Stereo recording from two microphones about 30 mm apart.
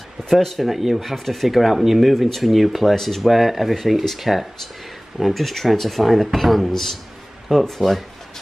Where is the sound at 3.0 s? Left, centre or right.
Centre.